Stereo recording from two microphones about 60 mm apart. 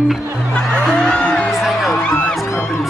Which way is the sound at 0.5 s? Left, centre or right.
Centre.